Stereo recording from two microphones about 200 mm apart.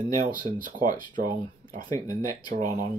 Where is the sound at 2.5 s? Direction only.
40° right (ahead or behind).